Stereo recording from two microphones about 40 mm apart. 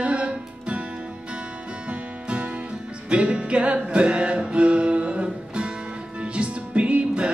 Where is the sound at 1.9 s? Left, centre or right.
Right.